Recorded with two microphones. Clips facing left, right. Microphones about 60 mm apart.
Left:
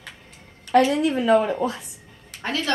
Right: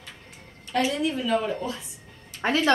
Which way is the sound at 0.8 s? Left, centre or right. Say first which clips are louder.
Left 6 dB; left.